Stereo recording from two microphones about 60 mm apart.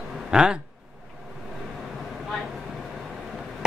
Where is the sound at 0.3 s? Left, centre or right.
Centre.